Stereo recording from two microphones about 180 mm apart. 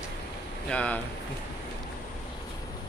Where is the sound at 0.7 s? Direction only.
5° left (ahead or behind).